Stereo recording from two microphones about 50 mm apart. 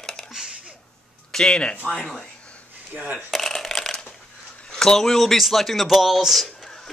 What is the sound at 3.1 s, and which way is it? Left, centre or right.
Shuffling cards, centre.